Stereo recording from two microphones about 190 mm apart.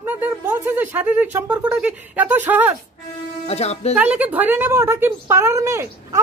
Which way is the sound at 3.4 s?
35° left (ahead or behind).